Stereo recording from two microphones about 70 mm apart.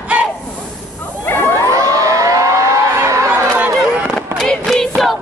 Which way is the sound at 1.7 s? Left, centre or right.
Right.